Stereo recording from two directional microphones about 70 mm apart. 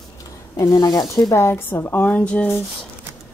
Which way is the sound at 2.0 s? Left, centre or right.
Centre.